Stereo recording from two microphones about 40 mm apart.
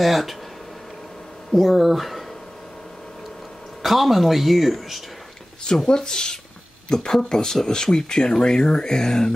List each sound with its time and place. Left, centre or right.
0.0 s speech: centre
1.5 s speech: centre
3.8 s speech: centre
5.8 s speech: centre